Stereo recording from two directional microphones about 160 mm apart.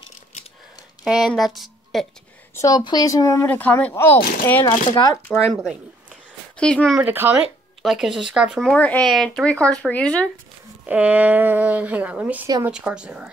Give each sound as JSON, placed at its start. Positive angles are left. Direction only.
{"t": 1.0, "sound": "speech", "side_deg": -5}
{"t": 2.5, "sound": "speech", "side_deg": 20}
{"t": 4.8, "sound": "speech", "side_deg": 25}
{"t": 5.5, "sound": "speech", "side_deg": 0}
{"t": 7.0, "sound": "speech", "side_deg": -10}
{"t": 7.8, "sound": "speech", "side_deg": 0}
{"t": 10.9, "sound": "speech", "side_deg": -10}